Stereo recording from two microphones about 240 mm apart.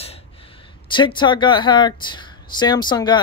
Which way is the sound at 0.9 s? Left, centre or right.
Centre.